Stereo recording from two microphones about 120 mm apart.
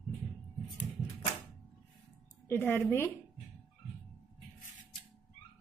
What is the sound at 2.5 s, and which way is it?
Speech, 20° left (ahead or behind).